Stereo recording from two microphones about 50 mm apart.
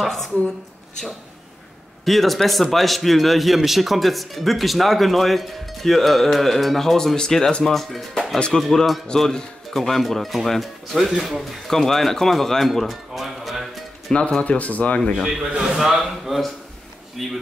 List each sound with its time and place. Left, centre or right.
0.0 s a man's voice: centre
2.0 s a man's voice: centre
14.4 s speech: left
15.1 s a man's voice: centre
16.1 s a man's voice: centre